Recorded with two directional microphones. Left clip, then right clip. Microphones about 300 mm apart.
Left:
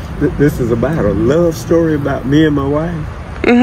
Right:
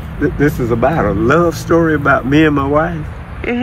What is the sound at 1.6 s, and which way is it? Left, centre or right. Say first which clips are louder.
Speech: right 2 dB; centre.